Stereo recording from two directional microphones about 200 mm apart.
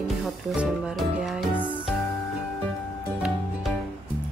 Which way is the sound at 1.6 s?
25° left (ahead or behind).